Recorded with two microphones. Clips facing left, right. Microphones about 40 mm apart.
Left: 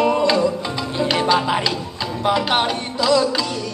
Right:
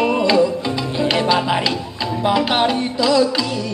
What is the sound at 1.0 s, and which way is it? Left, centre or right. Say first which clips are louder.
Salsa music: right 1 dB; centre.